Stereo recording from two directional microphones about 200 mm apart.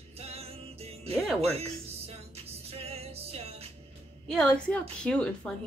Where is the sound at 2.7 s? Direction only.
30° right (ahead or behind).